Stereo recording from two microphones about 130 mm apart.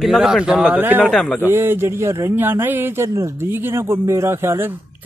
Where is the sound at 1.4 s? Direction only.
20° right (ahead or behind).